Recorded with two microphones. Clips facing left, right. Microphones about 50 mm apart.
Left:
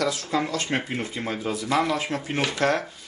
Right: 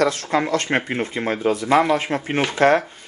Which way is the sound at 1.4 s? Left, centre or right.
Right.